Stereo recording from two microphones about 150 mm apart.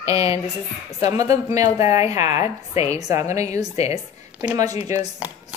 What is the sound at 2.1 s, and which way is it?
Speech, 45° left (ahead or behind).